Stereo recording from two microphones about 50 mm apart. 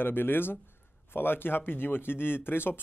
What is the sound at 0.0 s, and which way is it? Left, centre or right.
Speech, left.